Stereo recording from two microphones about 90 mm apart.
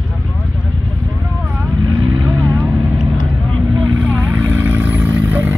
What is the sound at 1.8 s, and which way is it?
Vehicle, 45° right (ahead or behind).